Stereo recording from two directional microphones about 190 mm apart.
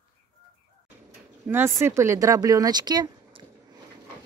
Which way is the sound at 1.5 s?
10° right (ahead or behind).